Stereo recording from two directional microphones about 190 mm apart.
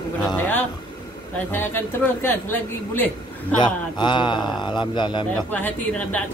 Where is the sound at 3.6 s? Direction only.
25° left (ahead or behind).